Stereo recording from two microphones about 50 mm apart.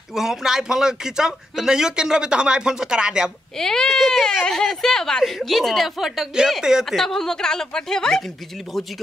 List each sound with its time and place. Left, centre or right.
0.1 s a man's voice: centre
3.5 s a woman's voice: centre
4.3 s a woman's voice: centre
7.0 s a woman's voice: centre